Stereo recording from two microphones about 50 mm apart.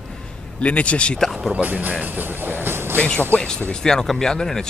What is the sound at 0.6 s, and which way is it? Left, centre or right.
Speech, left.